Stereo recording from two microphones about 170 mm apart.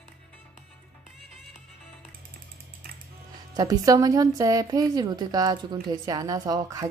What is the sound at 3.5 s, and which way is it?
A woman's voice, 20° right (ahead or behind).